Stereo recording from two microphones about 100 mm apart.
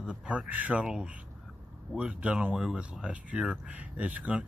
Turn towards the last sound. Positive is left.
turn(degrees=-15)  # may be behind; listen again after turning